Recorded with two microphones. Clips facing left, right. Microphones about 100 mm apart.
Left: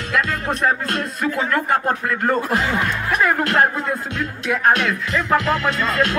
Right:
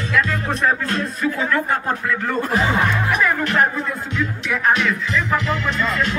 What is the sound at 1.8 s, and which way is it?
Music, 45° left (ahead or behind).